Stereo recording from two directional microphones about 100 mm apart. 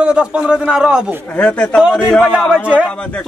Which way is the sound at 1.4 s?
15° left (ahead or behind).